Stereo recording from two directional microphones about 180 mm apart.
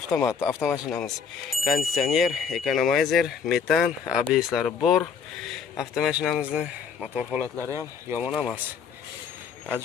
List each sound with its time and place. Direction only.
0.1 s speech: 15° left (ahead or behind)
1.0 s speech: centre (ahead or behind)
7.4 s speech: 10° left (ahead or behind)